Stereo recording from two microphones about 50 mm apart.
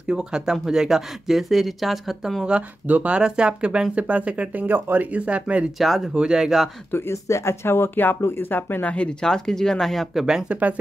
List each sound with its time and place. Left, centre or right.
0.1 s speech: centre
2.9 s speech: right
3.2 s speech: centre
4.6 s speech: right
5.8 s speech: centre
6.1 s speech: centre
6.9 s speech: left
7.2 s speech: left
7.6 s speech: left
8.8 s speech: left
9.2 s speech: centre
10.5 s speech: right